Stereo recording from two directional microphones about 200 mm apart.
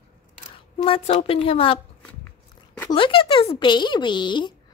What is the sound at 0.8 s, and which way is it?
Speech, 30° left (ahead or behind).